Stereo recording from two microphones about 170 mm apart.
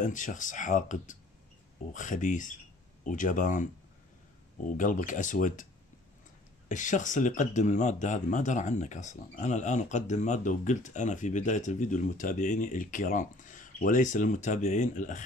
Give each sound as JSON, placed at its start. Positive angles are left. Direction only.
{"t": 0.0, "sound": "speech", "side_deg": 50}
{"t": 4.7, "sound": "speech", "side_deg": 50}
{"t": 6.7, "sound": "speech", "side_deg": 45}